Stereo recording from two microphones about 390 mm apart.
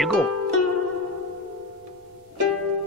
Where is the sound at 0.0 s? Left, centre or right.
Centre.